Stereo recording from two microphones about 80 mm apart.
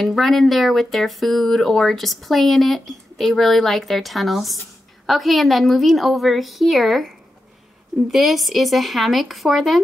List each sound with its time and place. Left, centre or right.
0.0 s speech: centre
8.1 s speech: centre